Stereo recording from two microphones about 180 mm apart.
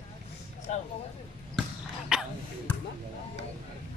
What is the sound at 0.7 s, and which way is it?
Speech, 40° left (ahead or behind).